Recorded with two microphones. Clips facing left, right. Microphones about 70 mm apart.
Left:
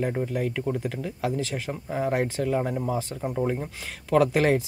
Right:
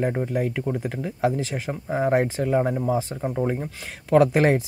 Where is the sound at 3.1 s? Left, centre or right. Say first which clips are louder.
Right 2 dB; right.